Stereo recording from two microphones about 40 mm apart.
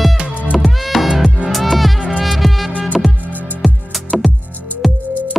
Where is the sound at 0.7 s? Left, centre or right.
Centre.